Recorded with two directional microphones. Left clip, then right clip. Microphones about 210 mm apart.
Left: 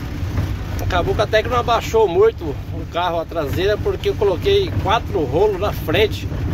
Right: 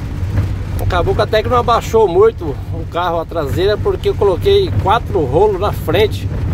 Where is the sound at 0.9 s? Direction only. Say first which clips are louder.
Right 3 dB; 20° right (ahead or behind).